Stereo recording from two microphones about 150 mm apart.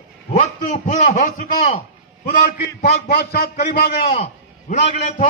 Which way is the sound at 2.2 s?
75° left (ahead or behind).